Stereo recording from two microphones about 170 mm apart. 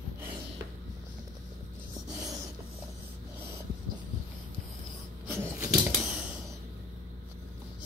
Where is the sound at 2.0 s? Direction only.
20° right (ahead or behind).